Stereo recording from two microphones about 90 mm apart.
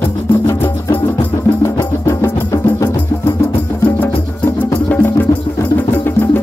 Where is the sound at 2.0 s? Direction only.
35° left (ahead or behind).